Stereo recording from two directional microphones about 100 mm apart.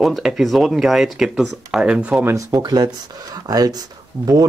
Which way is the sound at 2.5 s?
40° right (ahead or behind).